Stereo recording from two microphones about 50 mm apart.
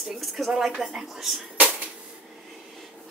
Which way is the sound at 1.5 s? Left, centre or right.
Right.